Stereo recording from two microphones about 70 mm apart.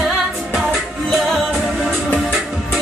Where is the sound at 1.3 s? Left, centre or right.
Centre.